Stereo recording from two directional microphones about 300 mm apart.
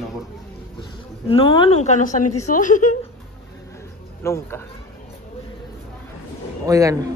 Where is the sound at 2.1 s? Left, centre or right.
Left.